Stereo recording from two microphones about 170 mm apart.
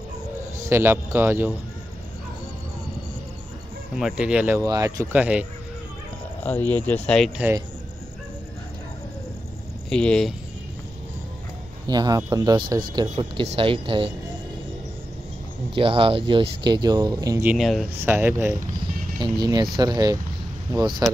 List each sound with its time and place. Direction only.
0.6 s a man's voice: 15° right (ahead or behind)
3.9 s speech: 5° right (ahead or behind)
4.6 s speech: 20° right (ahead or behind)
5.1 s a man's voice: 10° right (ahead or behind)
6.4 s speech: 10° left (ahead or behind)
7.3 s a man's voice: 10° right (ahead or behind)
9.8 s speech: 5° left (ahead or behind)
11.9 s speech: 25° right (ahead or behind)
15.7 s speech: 30° right (ahead or behind)
17.5 s speech: centre (ahead or behind)
18.0 s a man's voice: 15° right (ahead or behind)
19.1 s speech: 25° right (ahead or behind)